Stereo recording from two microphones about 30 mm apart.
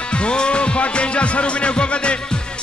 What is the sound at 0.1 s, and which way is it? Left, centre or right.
Music, left.